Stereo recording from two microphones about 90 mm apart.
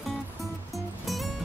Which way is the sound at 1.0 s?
Centre (ahead or behind).